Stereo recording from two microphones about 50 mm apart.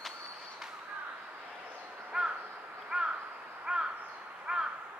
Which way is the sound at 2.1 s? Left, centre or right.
Centre.